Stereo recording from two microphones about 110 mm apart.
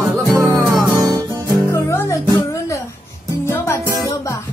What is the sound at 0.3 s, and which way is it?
Music, 25° right (ahead or behind).